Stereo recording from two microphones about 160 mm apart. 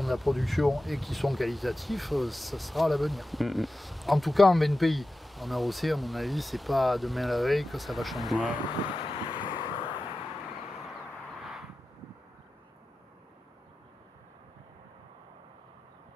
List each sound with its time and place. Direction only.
0.0 s speech: centre (ahead or behind)
8.8 s vehicle: 35° left (ahead or behind)